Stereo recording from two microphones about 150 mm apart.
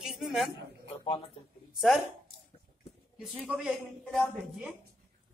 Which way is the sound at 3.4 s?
10° right (ahead or behind).